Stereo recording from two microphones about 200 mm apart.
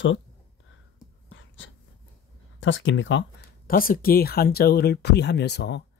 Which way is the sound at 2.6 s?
70° left (ahead or behind).